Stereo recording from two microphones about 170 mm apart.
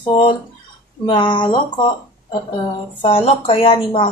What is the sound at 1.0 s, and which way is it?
Speech, 30° left (ahead or behind).